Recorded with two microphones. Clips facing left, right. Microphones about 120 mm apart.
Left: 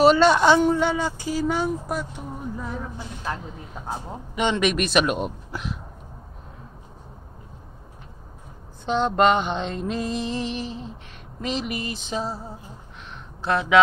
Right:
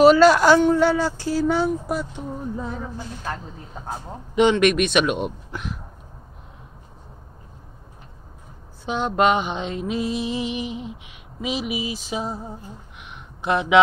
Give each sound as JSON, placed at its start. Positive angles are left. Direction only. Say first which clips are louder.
{"t": 0.0, "sound": "speech", "louder": "right 3 dB", "side_deg": -5}
{"t": 0.7, "sound": "speech", "louder": "right 4 dB", "side_deg": 15}
{"t": 2.7, "sound": "speech", "louder": "right 1 dB", "side_deg": 0}
{"t": 8.8, "sound": "mantra", "louder": "left 1 dB", "side_deg": -5}
{"t": 13.1, "sound": "a sound", "louder": "right 1 dB", "side_deg": -15}